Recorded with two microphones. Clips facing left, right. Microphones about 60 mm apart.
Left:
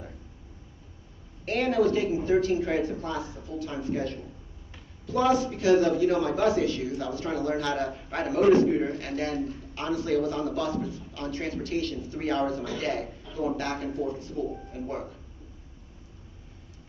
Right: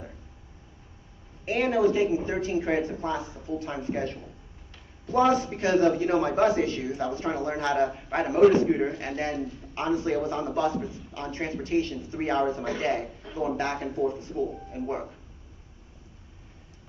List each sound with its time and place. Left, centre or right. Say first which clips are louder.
1.4 s a man's voice: right 1 dB; centre